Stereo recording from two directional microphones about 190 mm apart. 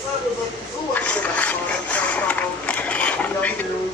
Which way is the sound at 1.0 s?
5° left (ahead or behind).